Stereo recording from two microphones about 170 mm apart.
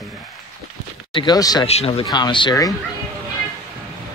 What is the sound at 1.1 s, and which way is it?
Speech, 25° left (ahead or behind).